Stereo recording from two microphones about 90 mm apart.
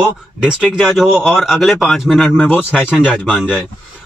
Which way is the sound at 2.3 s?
20° left (ahead or behind).